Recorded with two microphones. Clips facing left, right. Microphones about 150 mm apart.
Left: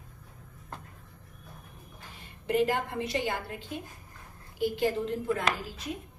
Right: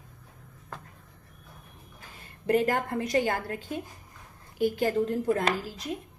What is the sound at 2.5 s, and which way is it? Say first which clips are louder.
Speech: right 2 dB; 45° right (ahead or behind).